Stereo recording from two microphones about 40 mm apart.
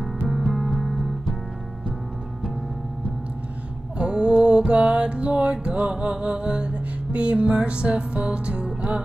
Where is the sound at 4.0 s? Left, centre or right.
Right.